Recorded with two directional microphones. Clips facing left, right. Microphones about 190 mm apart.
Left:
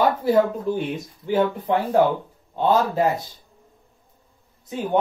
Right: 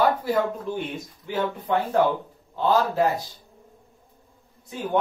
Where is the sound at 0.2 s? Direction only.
30° left (ahead or behind).